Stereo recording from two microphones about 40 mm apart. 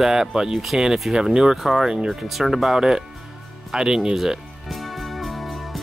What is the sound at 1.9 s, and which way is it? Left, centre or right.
Speech, centre.